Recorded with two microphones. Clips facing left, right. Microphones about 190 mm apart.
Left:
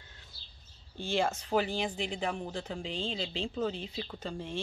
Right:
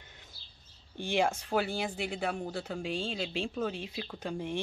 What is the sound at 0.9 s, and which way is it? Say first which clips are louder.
Speech: right 1 dB; 15° right (ahead or behind).